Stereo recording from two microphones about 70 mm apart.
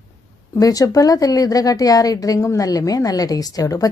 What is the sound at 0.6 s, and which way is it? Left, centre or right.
A woman's voice, left.